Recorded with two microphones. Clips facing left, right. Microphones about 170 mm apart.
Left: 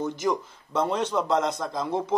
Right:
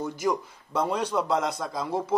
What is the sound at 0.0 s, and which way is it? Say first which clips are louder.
A man's voice: left 1 dB; 10° right (ahead or behind).